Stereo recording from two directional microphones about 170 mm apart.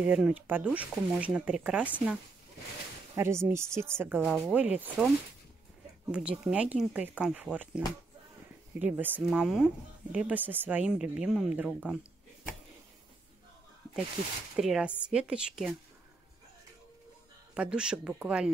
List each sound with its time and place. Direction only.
0.0 s speech: 5° right (ahead or behind)
3.2 s speech: 15° right (ahead or behind)
6.1 s speech: 5° right (ahead or behind)
14.6 s a woman's voice: 5° right (ahead or behind)
17.6 s a woman's voice: 5° right (ahead or behind)